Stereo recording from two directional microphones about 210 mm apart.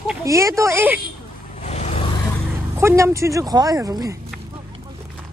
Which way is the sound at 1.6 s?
30° left (ahead or behind).